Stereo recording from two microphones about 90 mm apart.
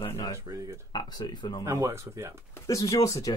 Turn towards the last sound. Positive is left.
turn(degrees=40)  # may be behind; listen again after turning